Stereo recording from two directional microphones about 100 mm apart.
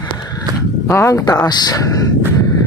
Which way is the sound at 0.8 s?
30° left (ahead or behind).